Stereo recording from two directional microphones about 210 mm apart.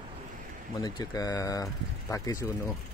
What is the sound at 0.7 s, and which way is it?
Speech, 20° left (ahead or behind).